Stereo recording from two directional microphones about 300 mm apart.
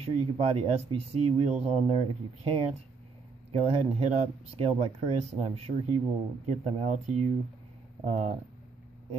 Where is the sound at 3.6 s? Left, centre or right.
Right.